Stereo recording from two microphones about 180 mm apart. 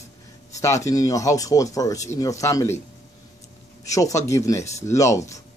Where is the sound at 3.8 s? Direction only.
20° left (ahead or behind).